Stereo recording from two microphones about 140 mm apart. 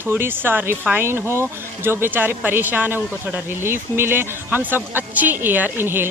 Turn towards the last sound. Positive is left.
turn(degrees=-15)  # may be behind; listen again after turning